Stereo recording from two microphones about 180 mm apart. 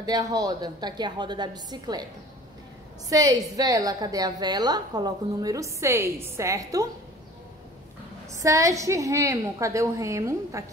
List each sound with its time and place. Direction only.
0.0 s a woman's voice: 20° right (ahead or behind)
3.1 s a woman's voice: 20° right (ahead or behind)
8.3 s a woman's voice: 20° right (ahead or behind)